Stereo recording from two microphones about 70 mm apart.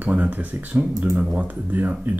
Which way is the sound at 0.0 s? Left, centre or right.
Right.